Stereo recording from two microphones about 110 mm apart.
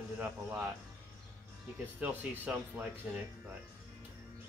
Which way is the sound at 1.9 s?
15° right (ahead or behind).